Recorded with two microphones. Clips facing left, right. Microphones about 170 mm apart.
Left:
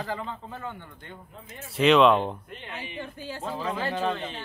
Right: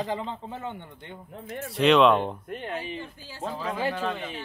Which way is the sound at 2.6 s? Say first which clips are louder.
Right 6 dB; 45° right (ahead or behind).